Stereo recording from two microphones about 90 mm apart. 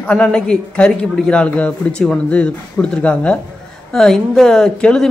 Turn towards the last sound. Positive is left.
turn(degrees=10)  # may be behind; listen again after turning